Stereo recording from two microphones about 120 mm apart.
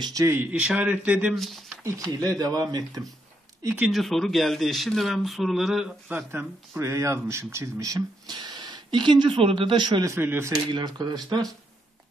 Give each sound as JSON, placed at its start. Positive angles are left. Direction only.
{"t": 0.2, "sound": "a man's voice", "side_deg": -20}
{"t": 1.3, "sound": "speech", "side_deg": 0}
{"t": 1.8, "sound": "speech", "side_deg": -30}
{"t": 3.8, "sound": "speech", "side_deg": 0}
{"t": 6.0, "sound": "a man's voice", "side_deg": -15}
{"t": 6.8, "sound": "speech", "side_deg": -25}
{"t": 10.0, "sound": "speech", "side_deg": -20}
{"t": 10.7, "sound": "speech", "side_deg": -35}